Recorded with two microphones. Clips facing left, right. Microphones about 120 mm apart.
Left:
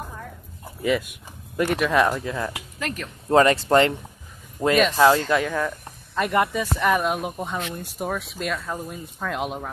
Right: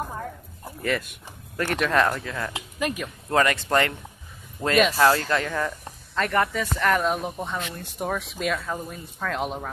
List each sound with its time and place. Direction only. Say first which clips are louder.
0.8 s speech: left 4 dB; 5° left (ahead or behind)
2.5 s speech: right 3 dB; 15° right (ahead or behind)
3.3 s speech: left 5 dB; 25° left (ahead or behind)
4.6 s speech: left 5 dB; 35° left (ahead or behind)
4.9 s speech: left 3 dB; 15° left (ahead or behind)